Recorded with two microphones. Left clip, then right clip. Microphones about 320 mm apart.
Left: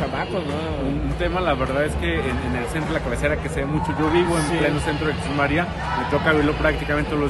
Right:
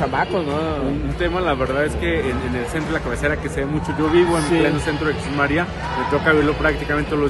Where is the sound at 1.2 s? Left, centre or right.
Centre.